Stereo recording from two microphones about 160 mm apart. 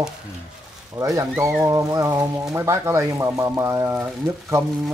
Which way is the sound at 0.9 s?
20° right (ahead or behind).